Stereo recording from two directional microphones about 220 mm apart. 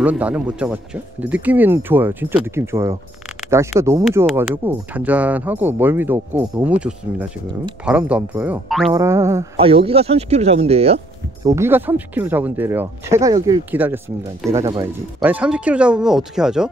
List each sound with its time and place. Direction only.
0.0 s speech: 5° right (ahead or behind)
8.9 s speech: 10° right (ahead or behind)
9.6 s speech: 25° right (ahead or behind)
11.4 s speech: 10° right (ahead or behind)